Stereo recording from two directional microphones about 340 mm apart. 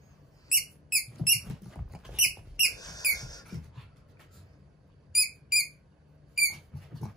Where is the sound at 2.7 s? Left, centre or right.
Centre.